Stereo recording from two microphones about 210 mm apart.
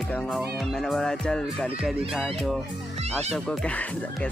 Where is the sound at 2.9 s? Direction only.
30° right (ahead or behind).